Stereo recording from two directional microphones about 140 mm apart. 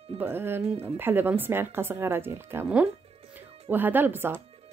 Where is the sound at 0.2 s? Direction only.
15° right (ahead or behind).